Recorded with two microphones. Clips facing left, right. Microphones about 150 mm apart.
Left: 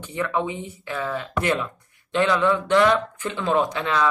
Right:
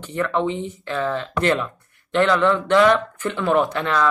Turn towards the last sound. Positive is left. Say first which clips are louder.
# right 2 dB
turn(degrees=15)  # may be behind; listen again after turning